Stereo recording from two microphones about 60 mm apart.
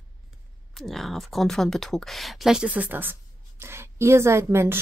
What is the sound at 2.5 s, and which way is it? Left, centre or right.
Speech, right.